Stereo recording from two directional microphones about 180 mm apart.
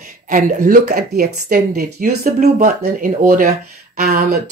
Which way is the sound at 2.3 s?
40° right (ahead or behind).